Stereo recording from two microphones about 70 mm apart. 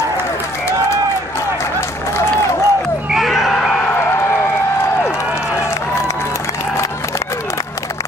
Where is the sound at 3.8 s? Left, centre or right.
Left.